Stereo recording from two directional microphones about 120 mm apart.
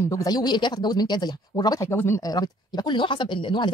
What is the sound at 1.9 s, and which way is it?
Speech, 20° left (ahead or behind).